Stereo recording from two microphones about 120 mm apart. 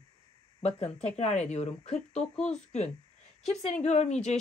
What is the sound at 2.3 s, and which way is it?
Speech, 10° left (ahead or behind).